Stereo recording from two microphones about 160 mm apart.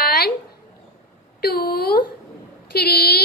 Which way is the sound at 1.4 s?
75° left (ahead or behind).